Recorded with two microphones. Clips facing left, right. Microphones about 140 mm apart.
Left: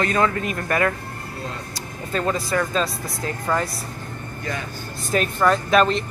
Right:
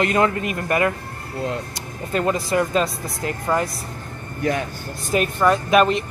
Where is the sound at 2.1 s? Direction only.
15° right (ahead or behind).